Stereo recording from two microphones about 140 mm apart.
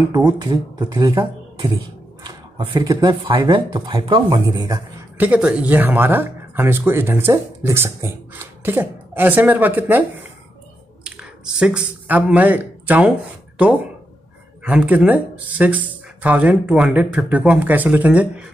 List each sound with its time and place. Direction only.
0.1 s speech: 30° right (ahead or behind)
2.2 s a sound: 35° right (ahead or behind)
2.8 s speech: 25° right (ahead or behind)
5.1 s speech: 10° right (ahead or behind)
11.1 s speech: 5° right (ahead or behind)
14.6 s speech: 10° right (ahead or behind)